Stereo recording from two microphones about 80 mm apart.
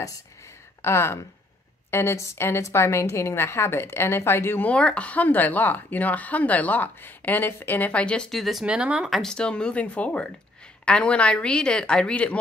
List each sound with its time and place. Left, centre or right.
0.8 s a woman's voice: left
4.6 s speech: centre
8.3 s speech: centre
8.6 s speech: centre
9.1 s a woman's voice: centre